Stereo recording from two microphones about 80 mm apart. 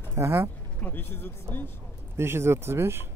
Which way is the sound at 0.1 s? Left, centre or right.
Right.